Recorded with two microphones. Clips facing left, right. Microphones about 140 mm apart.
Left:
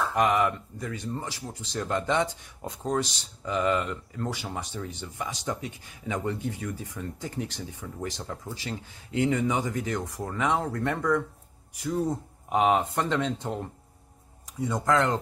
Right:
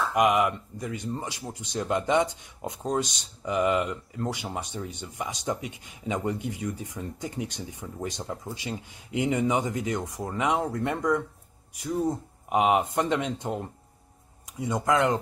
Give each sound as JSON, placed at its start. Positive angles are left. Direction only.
{"t": 0.1, "sound": "speech", "side_deg": -15}
{"t": 12.4, "sound": "speech", "side_deg": -15}
{"t": 14.6, "sound": "speech", "side_deg": -15}